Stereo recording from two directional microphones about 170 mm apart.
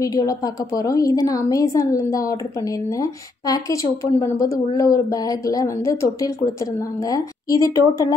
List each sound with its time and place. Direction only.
0.0 s speech: 20° left (ahead or behind)